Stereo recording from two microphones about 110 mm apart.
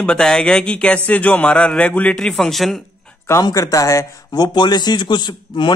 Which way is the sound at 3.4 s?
30° left (ahead or behind).